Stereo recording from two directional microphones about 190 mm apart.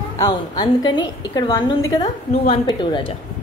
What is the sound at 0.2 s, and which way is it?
A woman's voice, 25° left (ahead or behind).